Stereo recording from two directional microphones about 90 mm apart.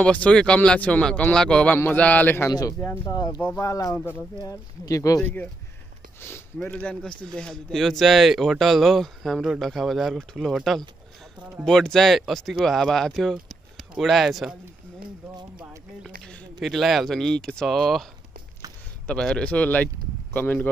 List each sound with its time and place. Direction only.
0.0 s a man's voice: 15° left (ahead or behind)
2.8 s speech: 35° left (ahead or behind)
3.2 s speech: 55° left (ahead or behind)
3.5 s speech: 40° left (ahead or behind)
4.0 s a man's voice: 25° left (ahead or behind)
4.4 s speech: 40° left (ahead or behind)
5.2 s a man's voice: 20° left (ahead or behind)
6.6 s speech: 10° left (ahead or behind); by 14.6 s 5° right (ahead or behind)
16.5 s speech: centre (ahead or behind)
19.0 s a man's voice: 10° left (ahead or behind)